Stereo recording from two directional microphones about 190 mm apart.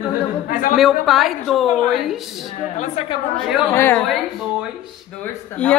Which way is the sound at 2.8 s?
30° left (ahead or behind).